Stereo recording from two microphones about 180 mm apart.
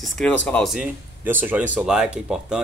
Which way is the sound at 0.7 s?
10° right (ahead or behind).